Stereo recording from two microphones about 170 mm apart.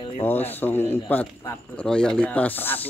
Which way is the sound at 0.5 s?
10° left (ahead or behind).